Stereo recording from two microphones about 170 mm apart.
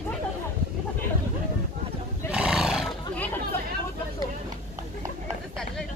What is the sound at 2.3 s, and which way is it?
Roar, 5° right (ahead or behind).